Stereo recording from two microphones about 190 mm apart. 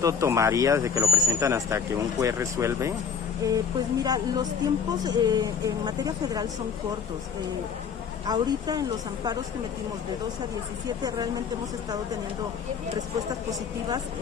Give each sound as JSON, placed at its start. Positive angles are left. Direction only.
{"t": 0.0, "sound": "speech", "side_deg": -15}
{"t": 8.3, "sound": "speech", "side_deg": -20}
{"t": 13.3, "sound": "speech", "side_deg": -20}